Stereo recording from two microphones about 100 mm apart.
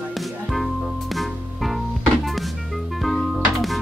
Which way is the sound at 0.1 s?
Centre (ahead or behind).